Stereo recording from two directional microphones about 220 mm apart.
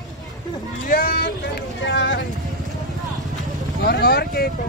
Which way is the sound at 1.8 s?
55° left (ahead or behind).